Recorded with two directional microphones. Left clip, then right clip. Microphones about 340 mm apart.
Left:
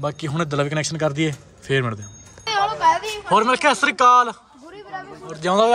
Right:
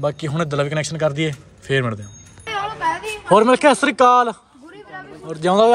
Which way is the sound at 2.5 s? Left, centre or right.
Left.